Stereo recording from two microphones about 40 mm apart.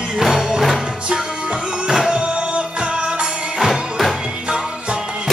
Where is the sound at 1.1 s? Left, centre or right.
Centre.